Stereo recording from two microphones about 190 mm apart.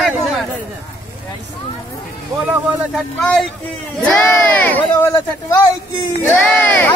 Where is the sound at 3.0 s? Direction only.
Centre (ahead or behind).